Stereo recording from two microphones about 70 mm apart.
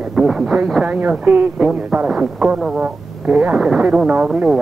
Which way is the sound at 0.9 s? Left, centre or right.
Right.